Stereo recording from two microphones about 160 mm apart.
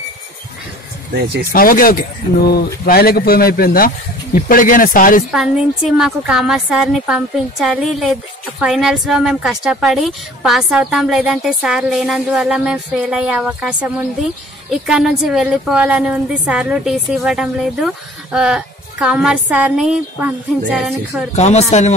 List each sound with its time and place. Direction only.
1.5 s speech: 60° left (ahead or behind)
5.3 s a woman's voice: 5° right (ahead or behind)
21.4 s speech: 45° left (ahead or behind)